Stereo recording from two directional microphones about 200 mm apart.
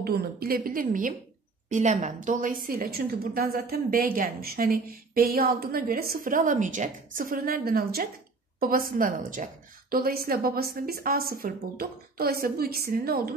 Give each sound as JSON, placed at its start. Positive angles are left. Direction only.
{"t": 0.0, "sound": "a woman's voice", "side_deg": -50}